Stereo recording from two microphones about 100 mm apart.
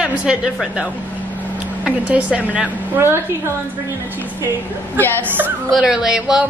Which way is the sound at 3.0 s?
25° right (ahead or behind).